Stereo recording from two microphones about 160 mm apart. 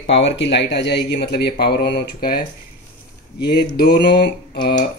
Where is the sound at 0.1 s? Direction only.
90° left; by 2.4 s 65° left (ahead or behind).